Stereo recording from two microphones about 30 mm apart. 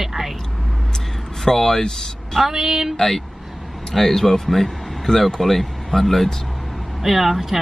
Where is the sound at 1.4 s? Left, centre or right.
Centre.